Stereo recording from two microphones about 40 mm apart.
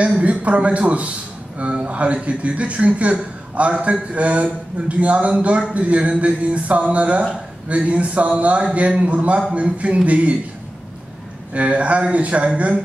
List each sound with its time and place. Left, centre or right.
0.2 s a man's voice: right
11.5 s a man's voice: right